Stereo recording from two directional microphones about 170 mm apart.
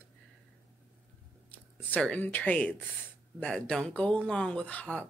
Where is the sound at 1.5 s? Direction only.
10° left (ahead or behind).